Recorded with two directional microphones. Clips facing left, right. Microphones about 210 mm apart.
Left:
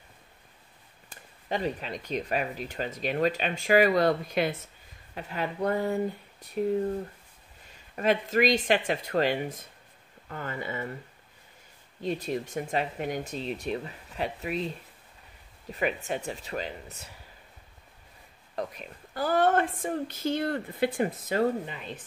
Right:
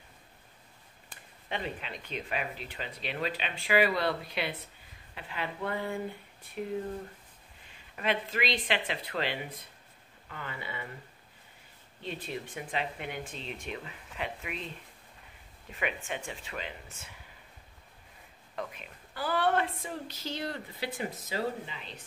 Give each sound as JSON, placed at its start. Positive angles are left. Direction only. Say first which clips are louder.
{"t": 1.1, "sound": "speech", "louder": "left 6 dB", "side_deg": 40}
{"t": 7.6, "sound": "speech", "louder": "left 6 dB", "side_deg": 40}
{"t": 12.0, "sound": "speech", "louder": "left 8 dB", "side_deg": 40}
{"t": 15.7, "sound": "speech", "louder": "left 6 dB", "side_deg": 40}
{"t": 18.6, "sound": "speech", "louder": "left 5 dB", "side_deg": 40}